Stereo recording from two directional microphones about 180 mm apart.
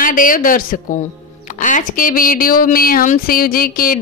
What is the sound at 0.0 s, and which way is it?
A woman's voice, 50° left (ahead or behind).